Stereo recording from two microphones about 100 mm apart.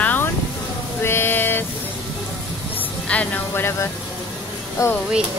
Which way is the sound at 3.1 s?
15° left (ahead or behind).